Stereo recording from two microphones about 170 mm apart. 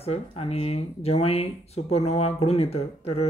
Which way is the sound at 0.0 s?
35° left (ahead or behind).